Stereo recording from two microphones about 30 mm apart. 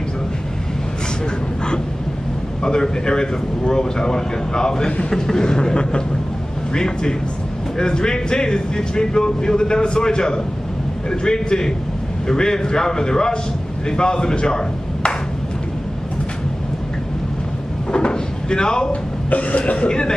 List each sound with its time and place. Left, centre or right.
2.6 s speech: left
17.9 s drawer open or close: left
19.3 s speech: left
19.9 s speech: left